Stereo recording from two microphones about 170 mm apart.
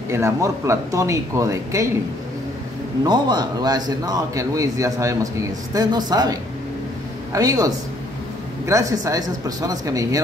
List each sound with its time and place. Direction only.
0.1 s speech: 15° right (ahead or behind)
3.0 s a man's voice: 25° right (ahead or behind)
7.3 s a man's voice: 20° right (ahead or behind)